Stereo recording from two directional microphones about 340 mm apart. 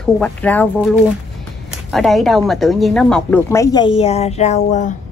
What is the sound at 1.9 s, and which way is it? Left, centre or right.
A woman's voice, centre.